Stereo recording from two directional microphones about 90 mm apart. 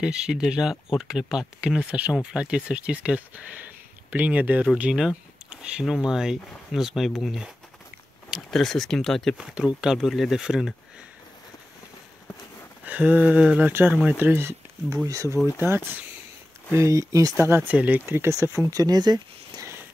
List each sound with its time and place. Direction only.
0.0 s speech: 10° right (ahead or behind)
9.6 s speech: 5° right (ahead or behind)
12.8 s speech: 15° right (ahead or behind)
15.0 s speech: 35° right (ahead or behind)
15.6 s speech: 25° right (ahead or behind)
17.4 s speech: 25° right (ahead or behind)
18.7 s speech: 45° right (ahead or behind)